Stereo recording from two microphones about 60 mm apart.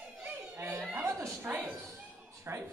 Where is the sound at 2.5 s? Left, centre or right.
Right.